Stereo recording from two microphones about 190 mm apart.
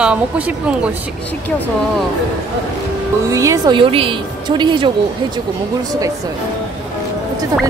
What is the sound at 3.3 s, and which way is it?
Speech, 15° right (ahead or behind).